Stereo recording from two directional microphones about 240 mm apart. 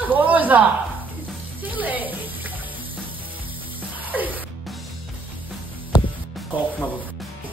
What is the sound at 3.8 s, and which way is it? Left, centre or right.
Music, centre.